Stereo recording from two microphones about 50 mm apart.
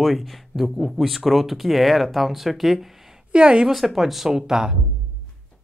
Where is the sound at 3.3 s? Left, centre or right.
Centre.